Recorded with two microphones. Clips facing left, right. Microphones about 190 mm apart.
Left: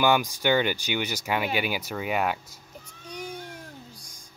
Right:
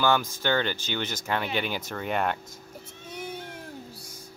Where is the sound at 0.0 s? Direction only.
15° left (ahead or behind).